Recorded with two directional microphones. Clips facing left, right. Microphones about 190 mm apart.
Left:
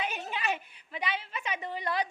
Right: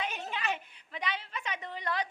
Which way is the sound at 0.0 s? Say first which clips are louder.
Left 2 dB; 10° left (ahead or behind).